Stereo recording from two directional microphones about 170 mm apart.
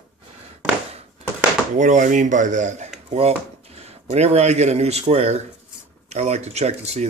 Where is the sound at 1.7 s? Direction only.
45° right (ahead or behind).